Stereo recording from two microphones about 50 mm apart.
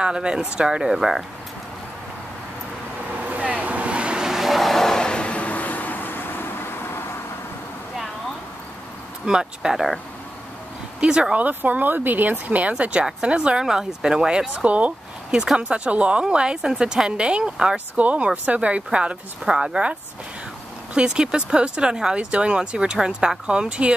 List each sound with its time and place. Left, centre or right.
0.0 s speech: centre
3.2 s vehicle: right; by 7.2 s left
9.2 s speech: centre
11.0 s speech: centre
11.4 s speech: right
15.3 s speech: centre
15.7 s speech: right
17.7 s speech: right